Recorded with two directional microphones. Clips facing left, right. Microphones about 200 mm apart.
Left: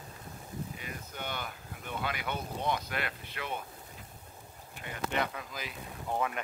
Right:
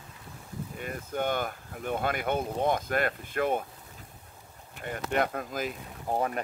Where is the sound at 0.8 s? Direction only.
50° right (ahead or behind).